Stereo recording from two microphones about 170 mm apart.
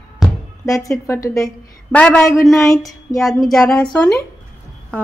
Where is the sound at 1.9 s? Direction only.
5° left (ahead or behind).